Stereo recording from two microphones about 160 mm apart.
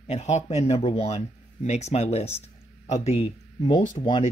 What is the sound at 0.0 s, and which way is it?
Speech, 45° left (ahead or behind).